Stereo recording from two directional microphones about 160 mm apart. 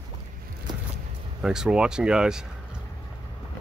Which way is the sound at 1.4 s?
5° right (ahead or behind).